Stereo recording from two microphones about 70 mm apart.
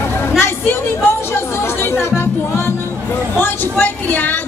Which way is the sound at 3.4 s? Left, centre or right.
Left.